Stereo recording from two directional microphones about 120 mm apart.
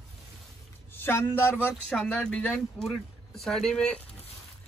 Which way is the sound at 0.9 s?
20° left (ahead or behind).